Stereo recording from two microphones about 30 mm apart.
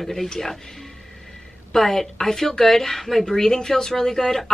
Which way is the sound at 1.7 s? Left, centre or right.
Centre.